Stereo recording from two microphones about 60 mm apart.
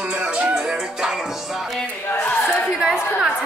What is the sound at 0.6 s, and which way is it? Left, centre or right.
Music, centre.